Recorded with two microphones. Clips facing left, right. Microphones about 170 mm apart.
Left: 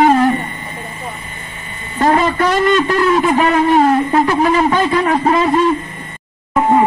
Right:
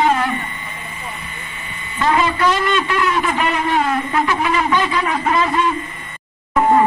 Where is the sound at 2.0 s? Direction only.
45° left (ahead or behind).